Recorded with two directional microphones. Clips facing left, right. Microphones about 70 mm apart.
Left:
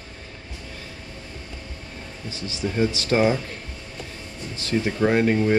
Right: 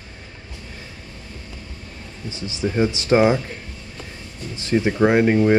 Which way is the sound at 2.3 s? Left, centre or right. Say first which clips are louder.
Right 4 dB; right.